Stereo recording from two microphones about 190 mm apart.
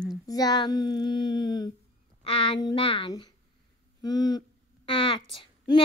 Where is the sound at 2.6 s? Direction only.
25° left (ahead or behind).